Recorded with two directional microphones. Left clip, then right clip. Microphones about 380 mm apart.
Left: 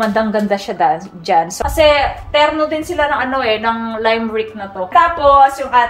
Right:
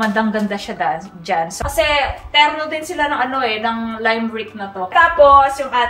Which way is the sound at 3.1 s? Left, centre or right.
Centre.